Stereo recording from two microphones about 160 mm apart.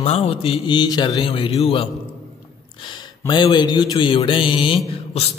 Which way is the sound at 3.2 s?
30° left (ahead or behind).